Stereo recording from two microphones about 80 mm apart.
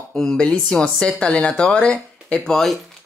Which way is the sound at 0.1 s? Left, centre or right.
Centre.